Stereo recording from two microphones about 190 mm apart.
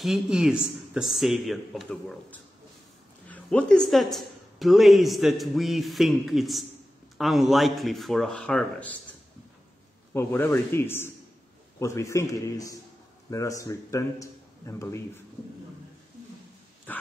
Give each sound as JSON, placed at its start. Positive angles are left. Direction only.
{"t": 0.0, "sound": "a woman's voice", "side_deg": 0}
{"t": 10.1, "sound": "a man's voice", "side_deg": 10}